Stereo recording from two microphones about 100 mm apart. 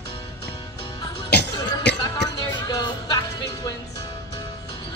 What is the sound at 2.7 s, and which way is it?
Music, 40° left (ahead or behind).